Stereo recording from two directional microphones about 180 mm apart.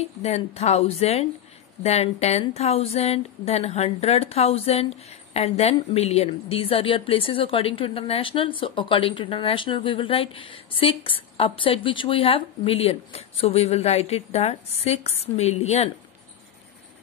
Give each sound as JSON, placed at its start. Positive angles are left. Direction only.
{"t": 0.0, "sound": "speech", "side_deg": 35}